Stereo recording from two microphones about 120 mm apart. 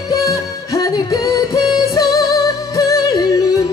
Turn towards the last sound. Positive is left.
turn(degrees=30)  # may be behind; listen again after turning